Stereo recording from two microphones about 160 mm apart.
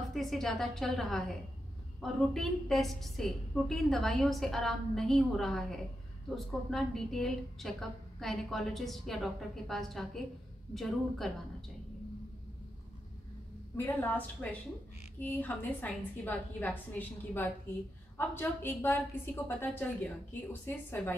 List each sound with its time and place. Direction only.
0.1 s a woman's voice: centre (ahead or behind)
13.7 s a woman's voice: 10° left (ahead or behind)